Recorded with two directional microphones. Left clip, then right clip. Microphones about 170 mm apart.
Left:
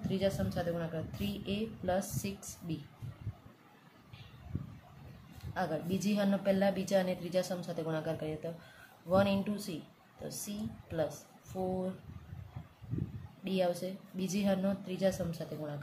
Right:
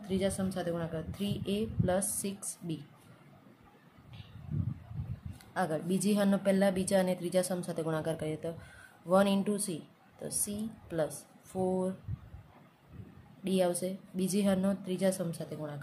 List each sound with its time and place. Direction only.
0.1 s a woman's voice: 30° right (ahead or behind)
5.5 s a woman's voice: 35° right (ahead or behind)
13.4 s a woman's voice: 40° right (ahead or behind)